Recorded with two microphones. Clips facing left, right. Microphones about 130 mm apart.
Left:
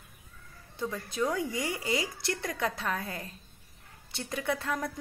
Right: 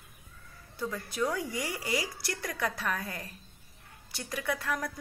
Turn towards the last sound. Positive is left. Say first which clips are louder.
# left 1 dB
turn(degrees=25)  # may be behind; listen again after turning